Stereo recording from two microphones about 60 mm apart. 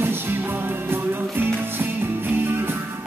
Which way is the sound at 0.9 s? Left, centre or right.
Right.